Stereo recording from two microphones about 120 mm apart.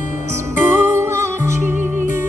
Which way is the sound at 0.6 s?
25° right (ahead or behind).